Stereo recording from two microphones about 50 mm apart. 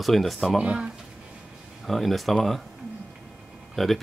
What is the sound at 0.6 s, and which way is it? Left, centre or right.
Speech, right.